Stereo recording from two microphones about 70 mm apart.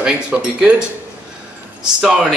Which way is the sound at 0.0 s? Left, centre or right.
Centre.